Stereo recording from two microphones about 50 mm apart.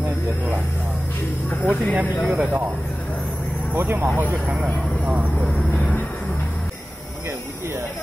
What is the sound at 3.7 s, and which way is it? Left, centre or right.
Speech, right.